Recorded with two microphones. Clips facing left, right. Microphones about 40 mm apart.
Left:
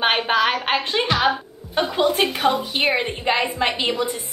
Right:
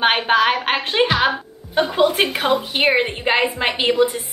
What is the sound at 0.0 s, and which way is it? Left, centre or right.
A woman's voice, centre.